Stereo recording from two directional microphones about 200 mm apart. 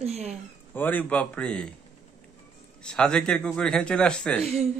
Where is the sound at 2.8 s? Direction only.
5° left (ahead or behind).